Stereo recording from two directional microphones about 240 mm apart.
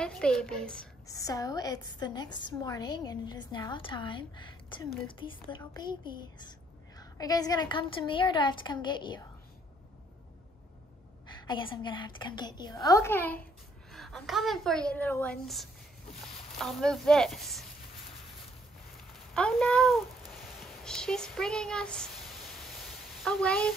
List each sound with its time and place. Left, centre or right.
0.0 s a woman's voice: centre
11.4 s a woman's voice: left; by 17.6 s centre
19.1 s a woman's voice: centre
23.2 s a woman's voice: centre